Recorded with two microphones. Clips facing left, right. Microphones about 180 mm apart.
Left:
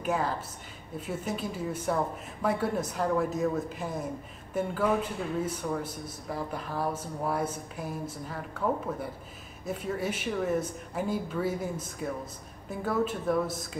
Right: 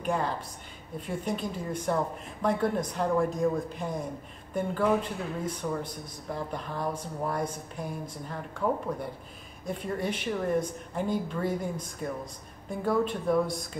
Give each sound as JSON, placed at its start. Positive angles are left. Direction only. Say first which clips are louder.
{"t": 0.0, "sound": "a woman's voice", "louder": "even", "side_deg": 5}